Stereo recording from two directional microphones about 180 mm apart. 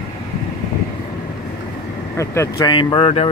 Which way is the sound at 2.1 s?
15° left (ahead or behind).